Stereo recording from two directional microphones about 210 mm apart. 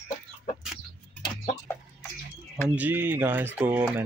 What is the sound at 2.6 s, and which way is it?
Speech, 10° right (ahead or behind).